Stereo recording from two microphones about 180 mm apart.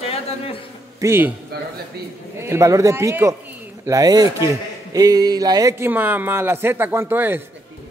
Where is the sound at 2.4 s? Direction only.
15° right (ahead or behind).